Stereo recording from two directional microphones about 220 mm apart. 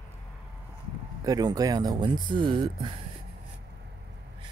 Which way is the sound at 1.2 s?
15° right (ahead or behind).